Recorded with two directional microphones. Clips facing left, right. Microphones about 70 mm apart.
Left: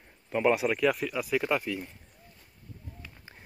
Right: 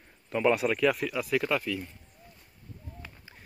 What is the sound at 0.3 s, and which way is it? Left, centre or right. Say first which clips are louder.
Speech: even; centre.